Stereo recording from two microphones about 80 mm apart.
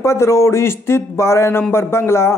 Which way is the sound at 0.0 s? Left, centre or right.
Left.